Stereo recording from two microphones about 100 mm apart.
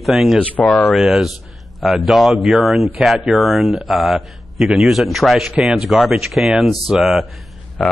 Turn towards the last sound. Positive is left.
turn(degrees=0)  # may be behind; listen again after turning